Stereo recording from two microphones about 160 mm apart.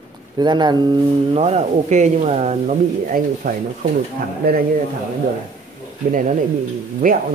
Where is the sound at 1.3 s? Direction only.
40° right (ahead or behind).